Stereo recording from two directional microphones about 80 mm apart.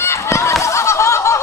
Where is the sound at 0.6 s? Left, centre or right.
Left.